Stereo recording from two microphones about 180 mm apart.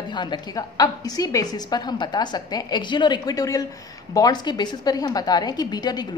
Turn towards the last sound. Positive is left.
turn(degrees=20)  # may be behind; listen again after turning